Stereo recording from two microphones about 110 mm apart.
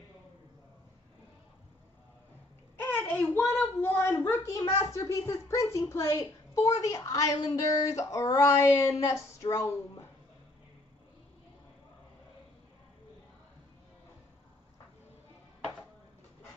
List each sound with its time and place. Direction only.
2.8 s babbling: 15° left (ahead or behind)
3.3 s a child's voice: 20° left (ahead or behind)